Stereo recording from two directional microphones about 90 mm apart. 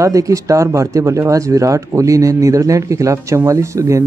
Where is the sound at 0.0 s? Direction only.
40° right (ahead or behind).